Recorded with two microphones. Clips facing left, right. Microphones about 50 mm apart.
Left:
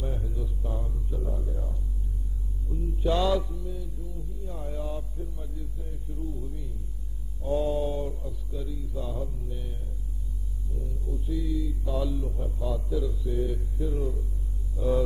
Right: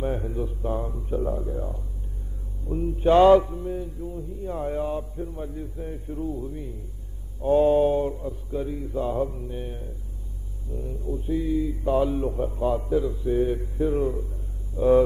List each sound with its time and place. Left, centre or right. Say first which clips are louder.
0.0 s a sound: right 8 dB; right
1.4 s a man's voice: right 7 dB; right
2.7 s a man's voice: right 9 dB; right